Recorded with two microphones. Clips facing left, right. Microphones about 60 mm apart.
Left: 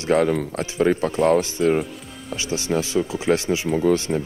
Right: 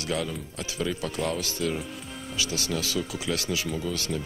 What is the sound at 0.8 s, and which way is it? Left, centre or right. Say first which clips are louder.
Speech: left 11 dB; left.